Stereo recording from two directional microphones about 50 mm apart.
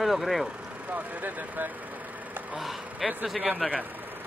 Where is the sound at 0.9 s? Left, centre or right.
Right.